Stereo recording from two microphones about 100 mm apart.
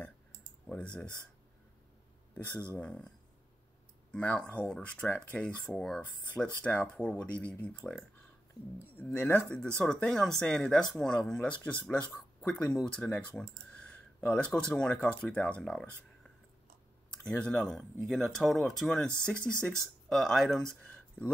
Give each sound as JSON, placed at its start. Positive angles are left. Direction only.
{"t": 0.7, "sound": "speech", "side_deg": 10}
{"t": 2.3, "sound": "speech", "side_deg": 15}
{"t": 4.1, "sound": "speech", "side_deg": 10}
{"t": 17.2, "sound": "speech", "side_deg": 10}